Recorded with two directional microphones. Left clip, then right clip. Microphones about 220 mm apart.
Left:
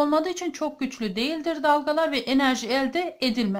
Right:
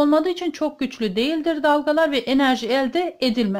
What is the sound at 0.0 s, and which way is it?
Speech, 15° right (ahead or behind).